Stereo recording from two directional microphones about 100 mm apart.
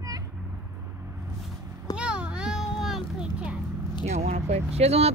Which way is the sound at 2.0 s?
10° right (ahead or behind).